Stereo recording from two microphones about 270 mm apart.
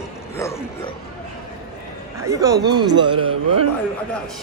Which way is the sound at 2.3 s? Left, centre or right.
Centre.